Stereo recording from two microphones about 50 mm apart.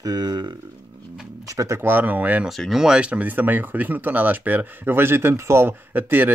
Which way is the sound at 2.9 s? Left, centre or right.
Right.